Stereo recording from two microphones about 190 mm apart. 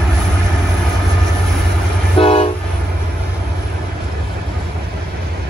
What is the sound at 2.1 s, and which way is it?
Train, 30° left (ahead or behind).